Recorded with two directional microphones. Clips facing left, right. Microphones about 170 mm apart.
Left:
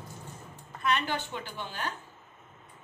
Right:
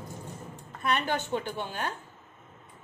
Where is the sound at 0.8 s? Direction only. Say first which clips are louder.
Right 1 dB; 50° right (ahead or behind).